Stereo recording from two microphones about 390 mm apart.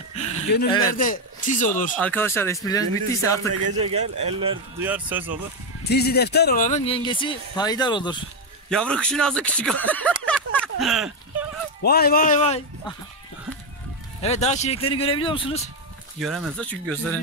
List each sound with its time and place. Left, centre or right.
0.2 s speech: centre
2.0 s speech: centre
3.8 s speech: centre
5.9 s speech: left; by 10.1 s centre
10.8 s a sound: centre
11.8 s speech: left
14.2 s speech: centre
16.2 s speech: centre